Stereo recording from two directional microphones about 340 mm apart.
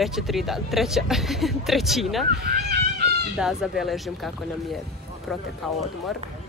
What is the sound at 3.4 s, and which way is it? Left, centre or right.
Speech, centre.